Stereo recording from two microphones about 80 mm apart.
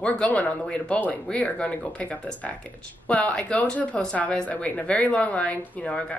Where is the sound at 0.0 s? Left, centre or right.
Centre.